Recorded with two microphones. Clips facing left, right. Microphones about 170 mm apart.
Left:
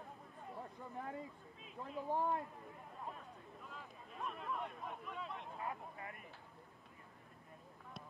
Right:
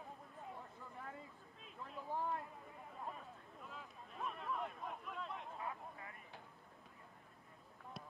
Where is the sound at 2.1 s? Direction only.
20° left (ahead or behind).